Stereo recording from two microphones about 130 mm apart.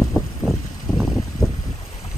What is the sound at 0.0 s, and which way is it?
Vehicle, 5° right (ahead or behind).